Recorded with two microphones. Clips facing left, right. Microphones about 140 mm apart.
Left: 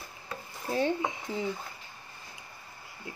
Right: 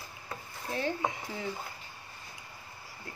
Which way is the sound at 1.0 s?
20° left (ahead or behind).